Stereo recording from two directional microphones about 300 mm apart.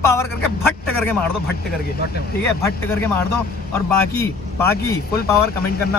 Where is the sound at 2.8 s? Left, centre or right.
Centre.